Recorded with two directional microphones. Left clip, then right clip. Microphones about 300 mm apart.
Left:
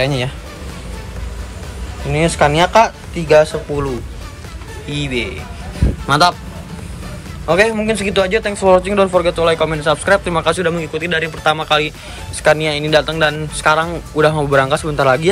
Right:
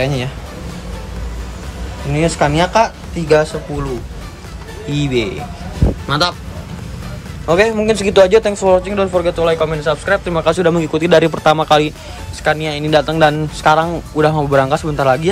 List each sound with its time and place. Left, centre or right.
0.0 s speech: centre
2.1 s speech: centre
4.8 s speech: centre
6.0 s speech: centre
7.4 s speech: centre